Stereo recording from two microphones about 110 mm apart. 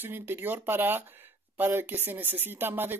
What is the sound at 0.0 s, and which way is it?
Speech, 20° right (ahead or behind).